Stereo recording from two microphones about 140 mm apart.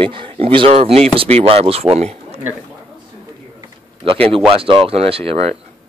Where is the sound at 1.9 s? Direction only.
50° right (ahead or behind).